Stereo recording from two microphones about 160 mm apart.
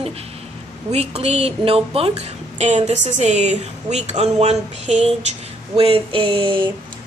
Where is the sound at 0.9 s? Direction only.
40° right (ahead or behind).